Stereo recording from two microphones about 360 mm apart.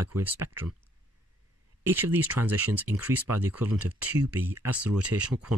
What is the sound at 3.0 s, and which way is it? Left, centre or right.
Speech, right.